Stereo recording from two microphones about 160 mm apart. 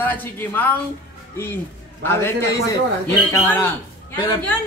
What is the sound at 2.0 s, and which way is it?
Speech, 15° left (ahead or behind).